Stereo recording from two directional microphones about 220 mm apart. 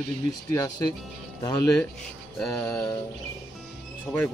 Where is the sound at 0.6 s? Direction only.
15° left (ahead or behind).